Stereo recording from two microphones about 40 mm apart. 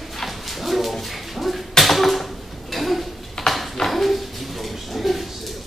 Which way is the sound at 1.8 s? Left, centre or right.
Centre.